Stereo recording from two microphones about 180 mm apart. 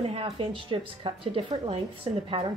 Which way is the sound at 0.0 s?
30° right (ahead or behind).